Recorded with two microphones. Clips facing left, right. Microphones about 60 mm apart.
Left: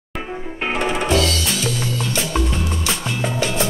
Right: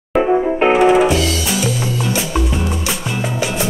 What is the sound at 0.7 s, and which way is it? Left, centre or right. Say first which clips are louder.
Music: right 5 dB; centre.